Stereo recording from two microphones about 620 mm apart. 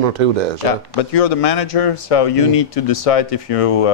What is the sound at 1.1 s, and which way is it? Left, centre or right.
Speech, left.